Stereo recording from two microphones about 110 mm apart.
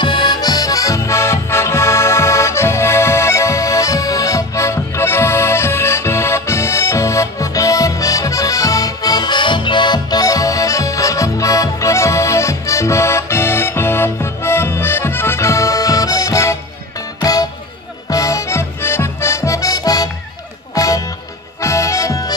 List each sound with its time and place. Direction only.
0.0 s music: 45° left (ahead or behind)
21.5 s accordion: 30° left (ahead or behind)